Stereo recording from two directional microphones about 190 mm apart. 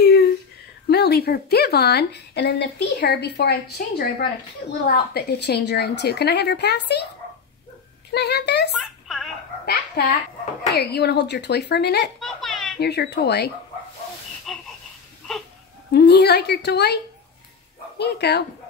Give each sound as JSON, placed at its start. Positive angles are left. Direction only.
{"t": 0.0, "sound": "a sound", "side_deg": 55}
{"t": 0.8, "sound": "speech", "side_deg": 55}
{"t": 8.1, "sound": "speech", "side_deg": 60}
{"t": 9.0, "sound": "dog", "side_deg": 0}
{"t": 10.0, "sound": "speech", "side_deg": 55}
{"t": 12.2, "sound": "a sound", "side_deg": 0}
{"t": 12.7, "sound": "speech", "side_deg": 60}
{"t": 14.5, "sound": "a sound", "side_deg": 0}
{"t": 15.9, "sound": "speech", "side_deg": 60}